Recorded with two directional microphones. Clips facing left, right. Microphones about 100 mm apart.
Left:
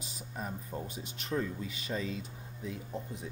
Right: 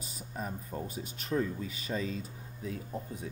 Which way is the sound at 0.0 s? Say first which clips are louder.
Even; 40° right (ahead or behind).